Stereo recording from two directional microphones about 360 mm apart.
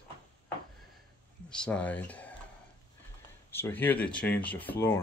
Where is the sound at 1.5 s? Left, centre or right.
Centre.